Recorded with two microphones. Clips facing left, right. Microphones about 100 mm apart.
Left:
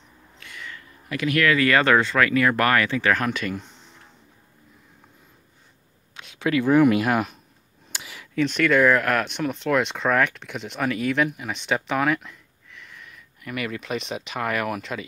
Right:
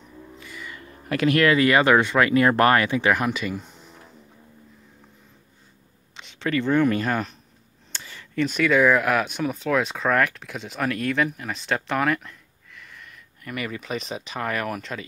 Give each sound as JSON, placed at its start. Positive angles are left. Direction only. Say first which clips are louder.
{"t": 0.4, "sound": "music", "louder": "left 1 dB", "side_deg": -5}
{"t": 1.0, "sound": "speech", "louder": "right 3 dB", "side_deg": -40}
{"t": 6.1, "sound": "speech", "louder": "left 2 dB", "side_deg": 5}
{"t": 7.9, "sound": "a sound", "louder": "left 1 dB", "side_deg": 10}
{"t": 8.5, "sound": "speech", "louder": "even", "side_deg": -5}